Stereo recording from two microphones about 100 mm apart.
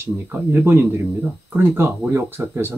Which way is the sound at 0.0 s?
20° right (ahead or behind).